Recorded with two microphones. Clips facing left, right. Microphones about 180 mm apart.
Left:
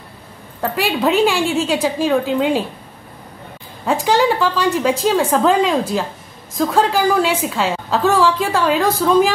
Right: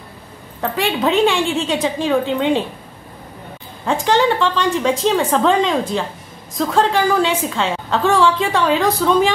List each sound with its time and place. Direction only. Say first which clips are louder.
0.6 s a woman's voice: even; 5° left (ahead or behind)
3.8 s a woman's voice: even; 10° left (ahead or behind)